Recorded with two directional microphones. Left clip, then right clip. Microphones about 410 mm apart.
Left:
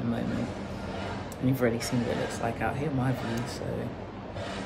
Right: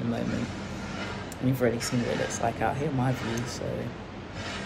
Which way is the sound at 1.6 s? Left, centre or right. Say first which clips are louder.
Right 2 dB; centre.